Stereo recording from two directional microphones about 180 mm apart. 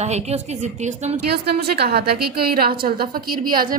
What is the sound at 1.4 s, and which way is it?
A woman's voice, 60° right (ahead or behind).